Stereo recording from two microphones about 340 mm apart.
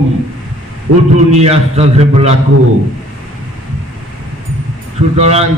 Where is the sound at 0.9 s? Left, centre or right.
Right.